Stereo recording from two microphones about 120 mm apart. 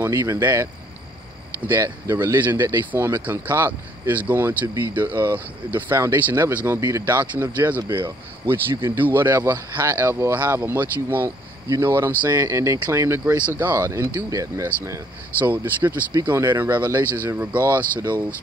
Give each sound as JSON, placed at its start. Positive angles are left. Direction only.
{"t": 0.0, "sound": "speech", "side_deg": -20}
{"t": 12.3, "sound": "speech", "side_deg": -25}
{"t": 15.3, "sound": "speech", "side_deg": -15}